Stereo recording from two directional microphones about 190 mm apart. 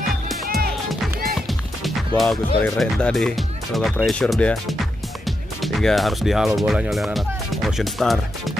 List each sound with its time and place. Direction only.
1.3 s music: centre (ahead or behind)
2.6 s speech: 5° left (ahead or behind)